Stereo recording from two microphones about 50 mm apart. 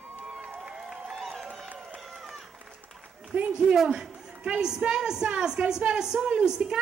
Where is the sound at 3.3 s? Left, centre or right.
Right.